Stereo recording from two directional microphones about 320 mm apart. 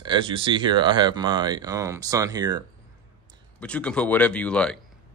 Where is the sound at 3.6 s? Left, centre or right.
Centre.